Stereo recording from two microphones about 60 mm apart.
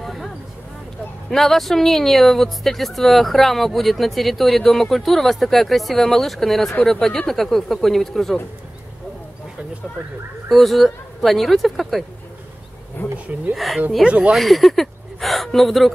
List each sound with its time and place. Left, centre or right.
0.0 s a sound: centre
1.3 s speech: centre
10.5 s speech: centre
13.0 s speech: left
13.5 s speech: centre
14.0 s speech: right
14.3 s speech: centre